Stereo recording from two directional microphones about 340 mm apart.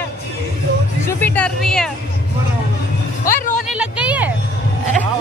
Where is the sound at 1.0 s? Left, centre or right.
Centre.